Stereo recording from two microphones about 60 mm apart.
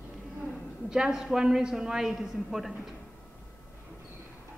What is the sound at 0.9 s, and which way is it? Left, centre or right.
A woman's voice, centre.